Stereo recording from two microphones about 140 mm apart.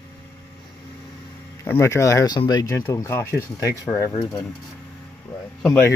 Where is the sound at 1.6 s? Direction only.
20° left (ahead or behind).